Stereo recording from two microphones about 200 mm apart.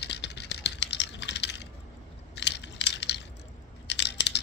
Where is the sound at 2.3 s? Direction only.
60° left (ahead or behind).